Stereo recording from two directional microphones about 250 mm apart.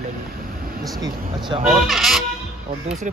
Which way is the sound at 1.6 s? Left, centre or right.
Centre.